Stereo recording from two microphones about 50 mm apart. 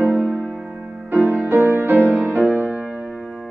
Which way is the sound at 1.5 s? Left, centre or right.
Right.